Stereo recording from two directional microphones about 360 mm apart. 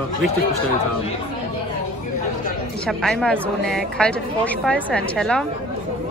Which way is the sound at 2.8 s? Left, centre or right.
Centre.